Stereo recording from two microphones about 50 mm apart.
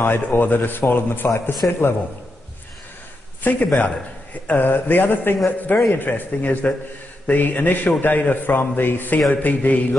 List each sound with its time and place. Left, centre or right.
0.0 s a man's voice: left
3.4 s a man's voice: left